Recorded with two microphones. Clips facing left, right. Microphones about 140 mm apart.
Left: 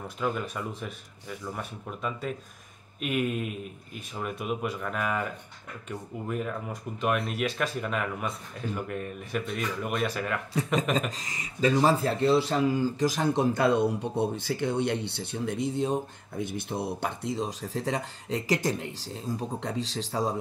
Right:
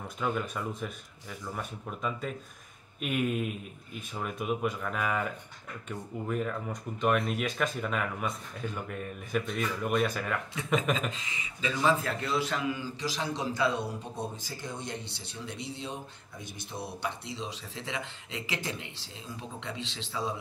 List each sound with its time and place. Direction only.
0.2 s speech: 5° left (ahead or behind)
11.0 s speech: 40° left (ahead or behind)